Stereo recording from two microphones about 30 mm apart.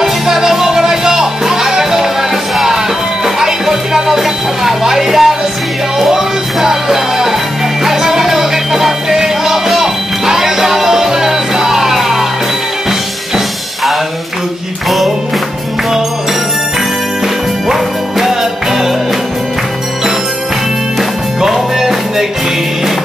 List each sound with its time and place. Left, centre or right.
0.0 s music: centre
17.6 s music: centre
21.4 s music: centre